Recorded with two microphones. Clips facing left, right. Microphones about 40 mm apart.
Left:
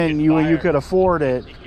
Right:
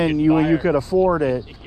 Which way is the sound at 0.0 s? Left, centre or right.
Left.